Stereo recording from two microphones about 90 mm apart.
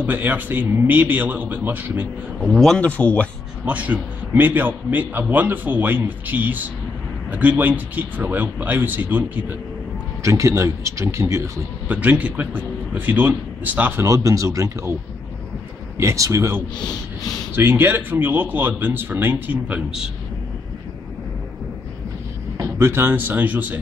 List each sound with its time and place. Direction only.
0.0 s a man's voice: 20° right (ahead or behind)
2.4 s speech: centre (ahead or behind)
2.8 s speech: 15° left (ahead or behind)
3.6 s a man's voice: 15° right (ahead or behind)
10.2 s speech: 35° right (ahead or behind)
11.9 s a man's voice: 15° right (ahead or behind)
14.0 s speech: 40° right (ahead or behind)
16.0 s a man's voice: 35° right (ahead or behind)
22.6 s a man's voice: 30° right (ahead or behind)